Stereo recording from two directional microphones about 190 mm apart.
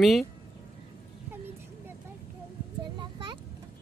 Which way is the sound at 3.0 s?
25° right (ahead or behind).